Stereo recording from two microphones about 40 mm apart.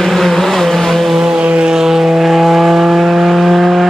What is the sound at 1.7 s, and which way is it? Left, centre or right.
Vehicle, centre.